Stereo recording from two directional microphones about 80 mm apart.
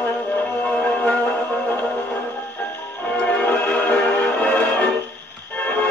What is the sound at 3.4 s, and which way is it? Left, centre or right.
Music, centre.